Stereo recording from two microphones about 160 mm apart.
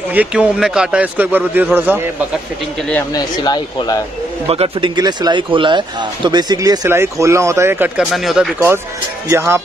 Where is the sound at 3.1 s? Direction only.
25° left (ahead or behind).